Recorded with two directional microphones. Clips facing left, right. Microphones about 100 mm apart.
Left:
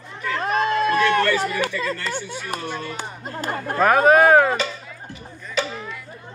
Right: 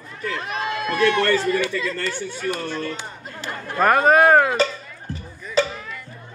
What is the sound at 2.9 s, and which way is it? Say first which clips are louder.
Speech: left 4 dB; 45° left (ahead or behind).